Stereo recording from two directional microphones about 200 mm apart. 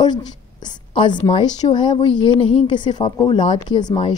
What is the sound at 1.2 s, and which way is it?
A woman's voice, 20° left (ahead or behind).